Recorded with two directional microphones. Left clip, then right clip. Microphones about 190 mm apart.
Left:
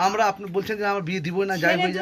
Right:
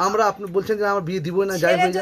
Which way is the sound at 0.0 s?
45° right (ahead or behind).